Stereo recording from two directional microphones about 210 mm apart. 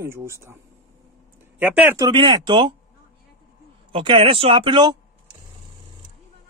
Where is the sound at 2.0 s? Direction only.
20° right (ahead or behind).